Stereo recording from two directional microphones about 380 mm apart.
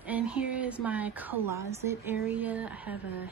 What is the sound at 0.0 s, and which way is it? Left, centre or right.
A woman's voice, centre.